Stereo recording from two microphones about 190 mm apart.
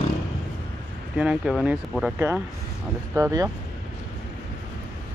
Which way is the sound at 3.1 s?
15° right (ahead or behind).